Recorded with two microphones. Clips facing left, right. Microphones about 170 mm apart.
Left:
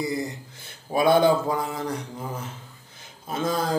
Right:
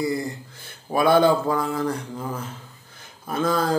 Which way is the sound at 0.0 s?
20° left (ahead or behind).